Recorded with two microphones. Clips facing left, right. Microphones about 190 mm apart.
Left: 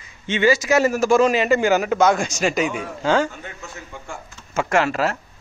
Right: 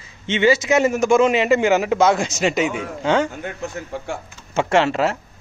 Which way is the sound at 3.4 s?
60° right (ahead or behind).